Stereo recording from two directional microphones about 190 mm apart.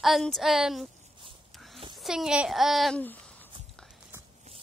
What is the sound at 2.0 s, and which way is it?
Speech, 5° right (ahead or behind).